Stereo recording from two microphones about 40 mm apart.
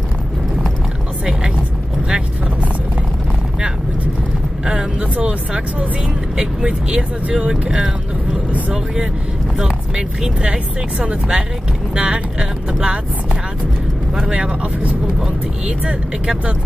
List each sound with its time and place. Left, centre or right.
5.1 s speech: right
8.5 s vehicle: right
9.6 s speech: centre
10.4 s speech: right
14.2 s speech: centre